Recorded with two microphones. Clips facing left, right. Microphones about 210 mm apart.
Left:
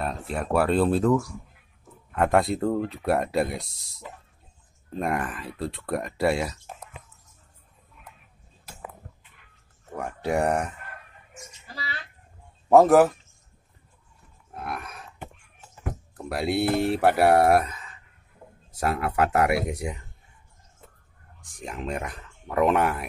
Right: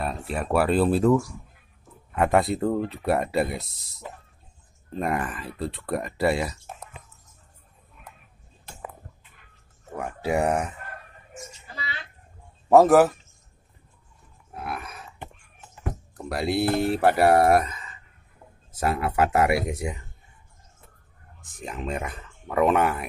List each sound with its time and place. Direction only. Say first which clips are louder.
0.0 s speech: even; centre (ahead or behind)
9.9 s speech: right 1 dB; 5° right (ahead or behind)
11.6 s a sound: left 2 dB; 40° left (ahead or behind)
12.6 s a man's voice: even; centre (ahead or behind)
14.5 s grunt: right 1 dB; centre (ahead or behind)
16.2 s speech: even; centre (ahead or behind)
21.5 s speech: right 1 dB; centre (ahead or behind)